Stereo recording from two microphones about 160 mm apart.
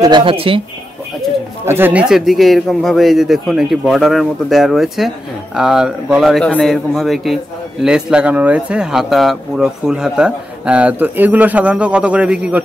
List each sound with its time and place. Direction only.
0.0 s speech: 30° right (ahead or behind)
1.7 s a man's voice: 10° right (ahead or behind)